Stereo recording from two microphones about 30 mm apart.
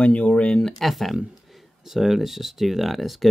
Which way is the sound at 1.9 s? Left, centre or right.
Centre.